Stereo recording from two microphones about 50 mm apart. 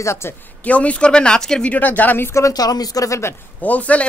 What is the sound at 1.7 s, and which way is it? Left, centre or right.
Speech, left.